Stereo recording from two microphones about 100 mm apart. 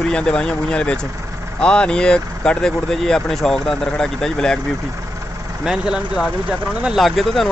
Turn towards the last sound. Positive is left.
turn(degrees=0)  # may be behind; listen again after turning